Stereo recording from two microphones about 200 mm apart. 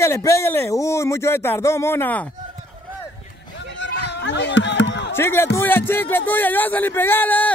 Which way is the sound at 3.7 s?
60° left (ahead or behind).